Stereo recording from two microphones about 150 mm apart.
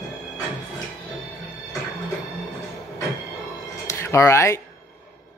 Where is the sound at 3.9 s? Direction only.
20° left (ahead or behind).